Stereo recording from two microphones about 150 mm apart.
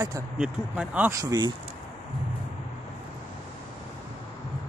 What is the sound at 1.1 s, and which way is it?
Speech, 25° right (ahead or behind).